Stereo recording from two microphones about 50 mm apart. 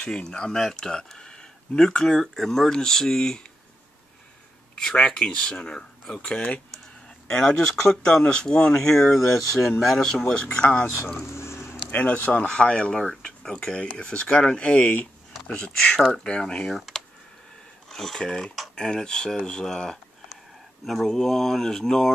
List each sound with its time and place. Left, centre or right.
0.1 s speech: centre
4.7 s speech: centre
11.3 s a sound: left
11.9 s speech: left
12.4 s speech: centre
16.7 s speech: centre
17.8 s a sound: centre
18.2 s speech: centre